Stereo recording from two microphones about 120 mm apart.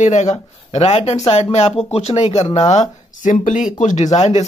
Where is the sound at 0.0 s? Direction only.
80° left; by 2.4 s 65° left (ahead or behind).